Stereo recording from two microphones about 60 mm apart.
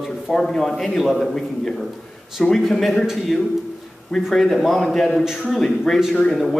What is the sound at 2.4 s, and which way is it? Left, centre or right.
Speech, centre.